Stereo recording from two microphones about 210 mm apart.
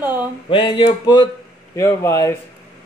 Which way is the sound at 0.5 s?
25° left (ahead or behind).